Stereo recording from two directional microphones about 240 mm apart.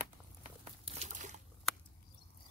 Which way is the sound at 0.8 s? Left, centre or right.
Right.